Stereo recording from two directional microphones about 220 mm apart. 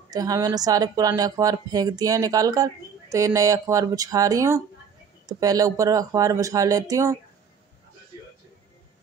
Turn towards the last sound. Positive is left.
turn(degrees=-15)  # may be behind; listen again after turning